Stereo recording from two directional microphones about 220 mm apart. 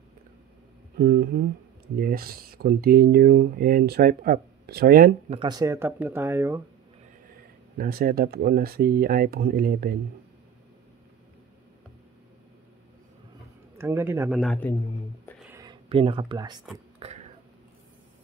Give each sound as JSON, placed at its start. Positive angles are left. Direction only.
{"t": 0.9, "sound": "speech", "side_deg": -45}
{"t": 5.3, "sound": "speech", "side_deg": -20}
{"t": 7.7, "sound": "speech", "side_deg": -40}
{"t": 13.7, "sound": "speech", "side_deg": -10}
{"t": 14.4, "sound": "a man's voice", "side_deg": 5}
{"t": 15.4, "sound": "a sound", "side_deg": -15}
{"t": 16.7, "sound": "whispering", "side_deg": -25}